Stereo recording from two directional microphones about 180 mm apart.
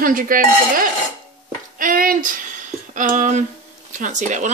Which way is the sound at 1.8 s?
50° right (ahead or behind).